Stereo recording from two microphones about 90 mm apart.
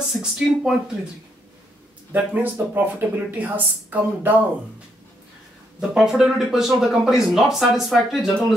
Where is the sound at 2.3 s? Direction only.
20° right (ahead or behind).